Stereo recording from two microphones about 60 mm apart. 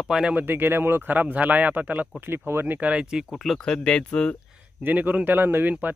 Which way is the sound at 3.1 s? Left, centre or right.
Centre.